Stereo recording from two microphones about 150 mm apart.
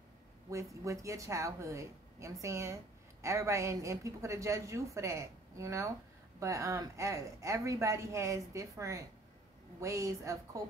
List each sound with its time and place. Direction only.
0.5 s a woman's voice: 20° right (ahead or behind)